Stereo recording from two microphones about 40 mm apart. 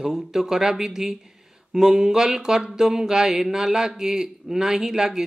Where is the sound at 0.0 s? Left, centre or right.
Centre.